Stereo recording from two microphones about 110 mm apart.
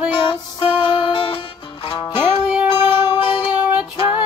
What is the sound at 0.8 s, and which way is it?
Music, 50° left (ahead or behind).